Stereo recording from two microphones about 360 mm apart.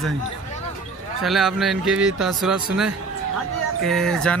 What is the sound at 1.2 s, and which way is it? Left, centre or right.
Speech, centre.